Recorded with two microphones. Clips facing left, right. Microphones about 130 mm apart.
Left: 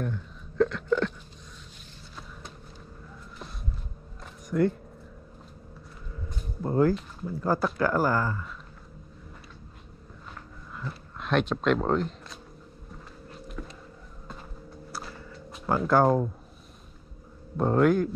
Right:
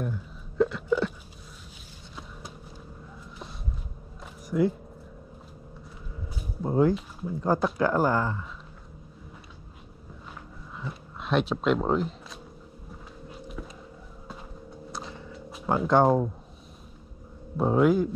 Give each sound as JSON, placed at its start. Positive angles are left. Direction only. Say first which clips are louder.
{"t": 0.0, "sound": "hiccup", "louder": "even", "side_deg": -5}
{"t": 4.5, "sound": "speech", "louder": "even", "side_deg": -5}
{"t": 6.2, "sound": "a sound", "louder": "right 1 dB", "side_deg": -5}
{"t": 7.8, "sound": "speech", "louder": "even", "side_deg": -20}
{"t": 10.8, "sound": "speech", "louder": "even", "side_deg": 0}
{"t": 12.9, "sound": "a sound", "louder": "right 1 dB", "side_deg": -5}
{"t": 14.9, "sound": "music", "louder": "right 1 dB", "side_deg": 5}
{"t": 17.6, "sound": "speech", "louder": "even", "side_deg": -5}